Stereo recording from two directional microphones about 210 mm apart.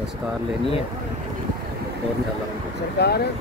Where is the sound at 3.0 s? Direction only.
50° left (ahead or behind).